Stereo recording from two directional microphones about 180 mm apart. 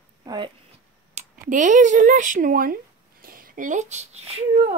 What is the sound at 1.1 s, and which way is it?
Speech, 45° right (ahead or behind).